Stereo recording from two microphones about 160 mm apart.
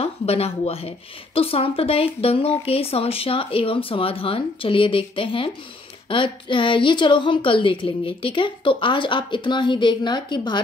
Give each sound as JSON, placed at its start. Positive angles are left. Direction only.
{"t": 0.0, "sound": "speech", "side_deg": 40}